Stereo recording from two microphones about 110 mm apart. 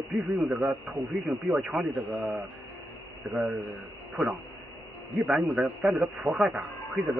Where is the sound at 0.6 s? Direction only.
20° right (ahead or behind).